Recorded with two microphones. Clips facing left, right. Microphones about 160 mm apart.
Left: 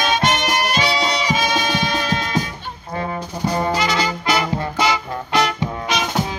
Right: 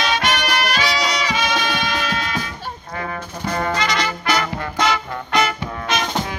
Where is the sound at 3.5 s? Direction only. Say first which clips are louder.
Left 2 dB; 15° left (ahead or behind).